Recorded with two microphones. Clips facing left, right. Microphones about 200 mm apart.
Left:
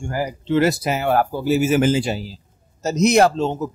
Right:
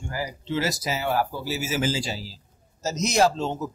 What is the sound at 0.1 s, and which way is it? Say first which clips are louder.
Speech: left 8 dB; 55° left (ahead or behind).